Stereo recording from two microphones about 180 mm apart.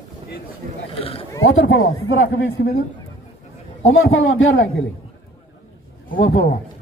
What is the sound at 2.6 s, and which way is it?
Speech, 75° left (ahead or behind).